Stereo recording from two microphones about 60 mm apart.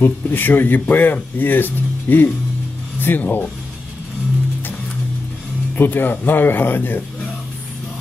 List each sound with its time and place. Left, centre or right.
0.0 s speech: left
5.8 s speech: left